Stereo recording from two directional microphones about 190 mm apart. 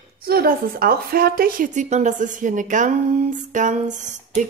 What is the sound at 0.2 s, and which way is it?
A woman's voice, 55° right (ahead or behind).